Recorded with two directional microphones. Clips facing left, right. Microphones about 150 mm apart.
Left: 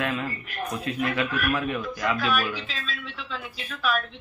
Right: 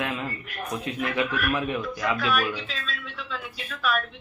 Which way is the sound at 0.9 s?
20° right (ahead or behind).